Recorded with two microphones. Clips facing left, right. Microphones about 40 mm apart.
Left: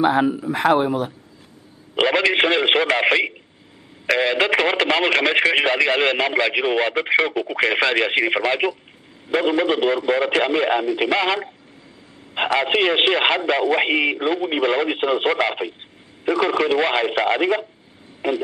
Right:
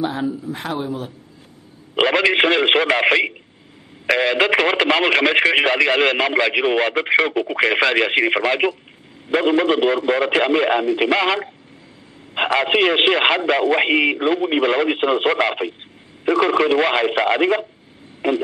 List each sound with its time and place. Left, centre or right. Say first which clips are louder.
0.0 s speech: left 5 dB; left
2.0 s speech: right 2 dB; centre